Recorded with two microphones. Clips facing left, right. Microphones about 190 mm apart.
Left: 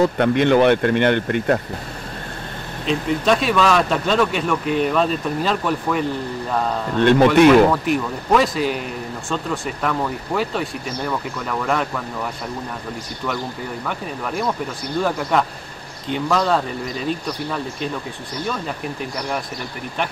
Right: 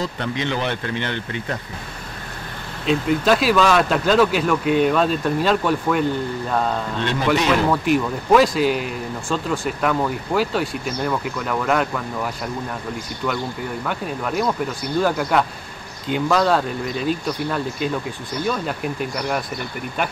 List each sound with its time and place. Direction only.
0.0 s speech: 55° left (ahead or behind)
2.9 s speech: centre (ahead or behind)
7.0 s speech: 55° left (ahead or behind)
7.7 s speech: centre (ahead or behind)
15.0 s speech: centre (ahead or behind)